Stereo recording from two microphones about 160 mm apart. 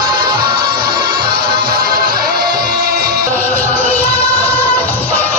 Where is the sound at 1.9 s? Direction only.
70° right (ahead or behind).